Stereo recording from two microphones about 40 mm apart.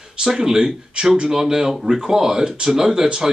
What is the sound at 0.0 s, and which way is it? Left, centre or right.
Speech, centre.